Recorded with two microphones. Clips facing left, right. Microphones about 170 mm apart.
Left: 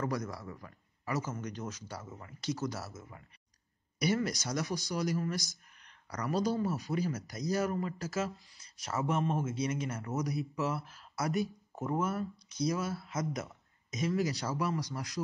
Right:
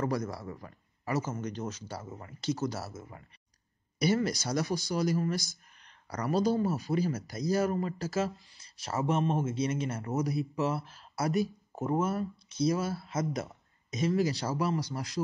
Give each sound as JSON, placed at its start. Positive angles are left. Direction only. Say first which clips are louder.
{"t": 0.0, "sound": "a man's voice", "louder": "right 3 dB", "side_deg": -30}